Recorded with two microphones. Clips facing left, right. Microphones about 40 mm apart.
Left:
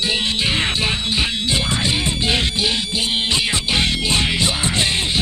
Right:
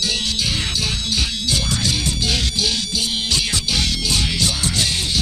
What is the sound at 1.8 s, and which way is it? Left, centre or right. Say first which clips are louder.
Music: left 2 dB; left.